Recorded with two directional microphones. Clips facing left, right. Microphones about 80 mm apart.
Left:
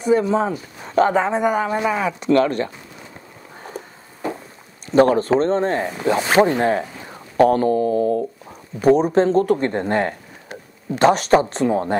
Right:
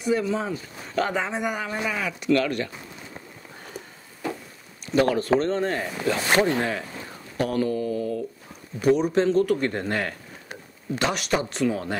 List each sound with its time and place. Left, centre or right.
0.0 s a man's voice: left
3.6 s a sound: left
4.9 s a man's voice: left